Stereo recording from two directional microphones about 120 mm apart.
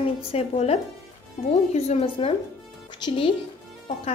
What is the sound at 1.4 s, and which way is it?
Speech, 90° left.